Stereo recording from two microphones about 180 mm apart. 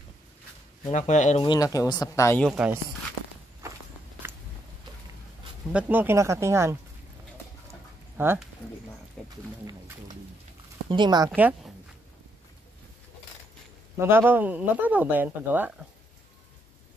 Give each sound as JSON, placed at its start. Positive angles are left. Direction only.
{"t": 0.9, "sound": "speech", "side_deg": 40}
{"t": 1.4, "sound": "speech", "side_deg": 20}
{"t": 2.4, "sound": "speech", "side_deg": -5}
{"t": 5.7, "sound": "speech", "side_deg": -10}
{"t": 8.2, "sound": "speech", "side_deg": -10}
{"t": 9.2, "sound": "speech", "side_deg": 5}
{"t": 10.9, "sound": "speech", "side_deg": -25}
{"t": 11.3, "sound": "speech", "side_deg": -10}
{"t": 13.9, "sound": "speech", "side_deg": -10}